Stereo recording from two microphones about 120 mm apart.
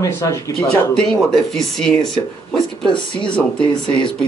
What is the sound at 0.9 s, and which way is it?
Speech, 5° left (ahead or behind).